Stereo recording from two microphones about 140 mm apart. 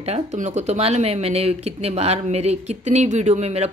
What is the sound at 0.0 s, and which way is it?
A woman's voice, 55° right (ahead or behind).